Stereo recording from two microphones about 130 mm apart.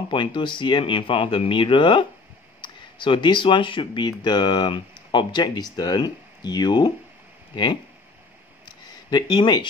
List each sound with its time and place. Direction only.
0.1 s speech: 35° left (ahead or behind)
9.1 s speech: 35° left (ahead or behind)